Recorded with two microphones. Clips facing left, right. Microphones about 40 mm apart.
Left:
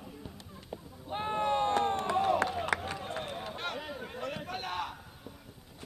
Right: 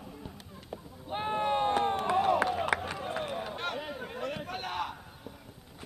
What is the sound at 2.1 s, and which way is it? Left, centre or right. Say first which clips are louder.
Chop: right 2 dB; centre.